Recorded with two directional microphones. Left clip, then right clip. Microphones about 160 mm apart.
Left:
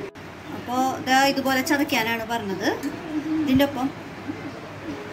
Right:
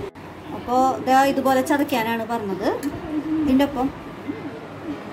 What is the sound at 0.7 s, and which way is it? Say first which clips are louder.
A woman's voice: right 4 dB; 30° right (ahead or behind).